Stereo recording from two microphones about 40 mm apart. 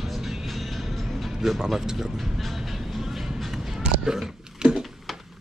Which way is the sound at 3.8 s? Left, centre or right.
Centre.